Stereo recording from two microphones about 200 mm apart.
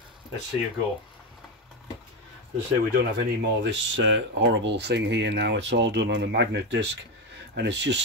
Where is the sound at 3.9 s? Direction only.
65° right (ahead or behind).